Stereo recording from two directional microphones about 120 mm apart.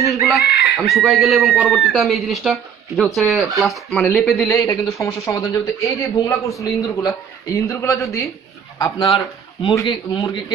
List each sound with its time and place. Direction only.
0.1 s speech: centre (ahead or behind)
4.5 s speech: 25° left (ahead or behind)
9.0 s a man's voice: 45° left (ahead or behind)
9.8 s a man's voice: 35° left (ahead or behind)